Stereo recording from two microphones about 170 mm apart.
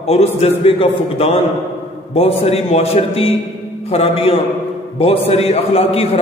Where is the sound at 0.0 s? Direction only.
40° left (ahead or behind).